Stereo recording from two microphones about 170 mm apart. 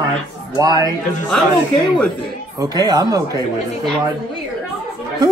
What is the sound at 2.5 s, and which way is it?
Speech, 25° right (ahead or behind).